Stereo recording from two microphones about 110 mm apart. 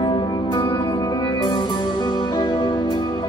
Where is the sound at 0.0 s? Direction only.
40° left (ahead or behind).